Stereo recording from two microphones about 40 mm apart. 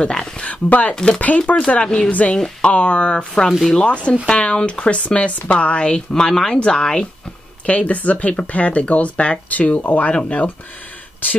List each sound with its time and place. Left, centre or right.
0.0 s speech: left
0.5 s speech: left
0.9 s speech: left
7.6 s speech: left
9.5 s speech: left